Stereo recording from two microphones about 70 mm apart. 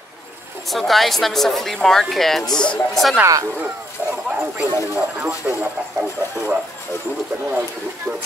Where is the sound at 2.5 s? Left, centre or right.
Centre.